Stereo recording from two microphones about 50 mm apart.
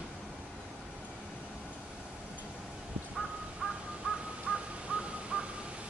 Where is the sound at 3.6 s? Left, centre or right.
Right.